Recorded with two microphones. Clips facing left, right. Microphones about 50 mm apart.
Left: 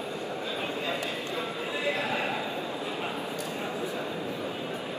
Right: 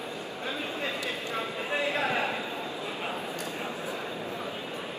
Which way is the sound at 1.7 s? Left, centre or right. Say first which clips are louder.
Right 2 dB; right.